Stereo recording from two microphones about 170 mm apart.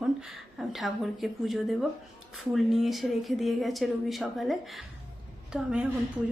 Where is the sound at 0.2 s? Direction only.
Centre (ahead or behind).